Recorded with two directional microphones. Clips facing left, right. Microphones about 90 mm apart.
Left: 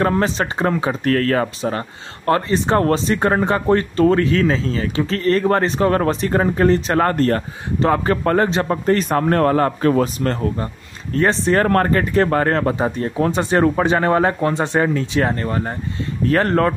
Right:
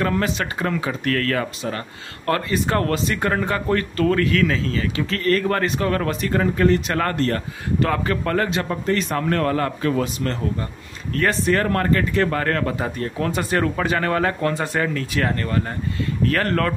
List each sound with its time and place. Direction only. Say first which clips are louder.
0.0 s a man's voice: left 4 dB; 30° left (ahead or behind)
11.1 s speech: left 4 dB; 30° left (ahead or behind)
11.7 s speech: left 4 dB; 40° left (ahead or behind)